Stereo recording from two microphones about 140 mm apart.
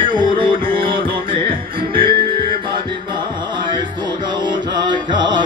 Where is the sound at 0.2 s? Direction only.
35° right (ahead or behind).